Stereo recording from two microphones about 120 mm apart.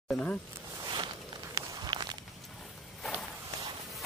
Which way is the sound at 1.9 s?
40° right (ahead or behind).